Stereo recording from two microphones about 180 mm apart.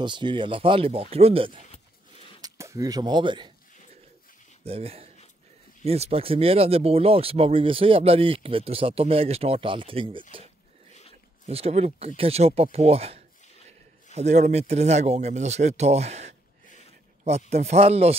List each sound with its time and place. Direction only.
0.0 s speech: 25° right (ahead or behind)
2.4 s speech: 15° right (ahead or behind)
4.6 s speech: 35° right (ahead or behind)
11.4 s speech: 35° right (ahead or behind)
17.5 s speech: 35° right (ahead or behind)